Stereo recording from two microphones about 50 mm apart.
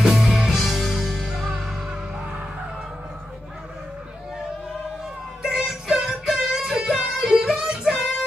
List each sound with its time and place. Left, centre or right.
0.0 s music: centre
5.4 s music: centre
7.8 s music: centre